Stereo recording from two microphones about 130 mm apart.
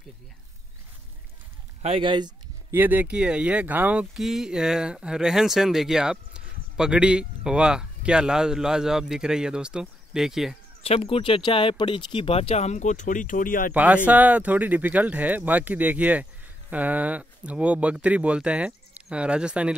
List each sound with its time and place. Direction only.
1.8 s speech: 55° right (ahead or behind)
2.0 s speech: 35° right (ahead or behind)
2.7 s speech: 15° right (ahead or behind)
10.8 s speech: 50° left (ahead or behind); by 13.7 s 90° left
13.7 s speech: 10° right (ahead or behind)